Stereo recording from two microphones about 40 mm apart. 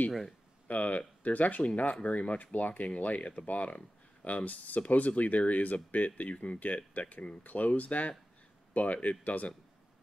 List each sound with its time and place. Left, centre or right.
0.7 s speech: left